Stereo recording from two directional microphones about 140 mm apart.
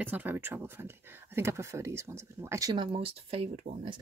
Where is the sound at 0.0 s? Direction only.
15° right (ahead or behind).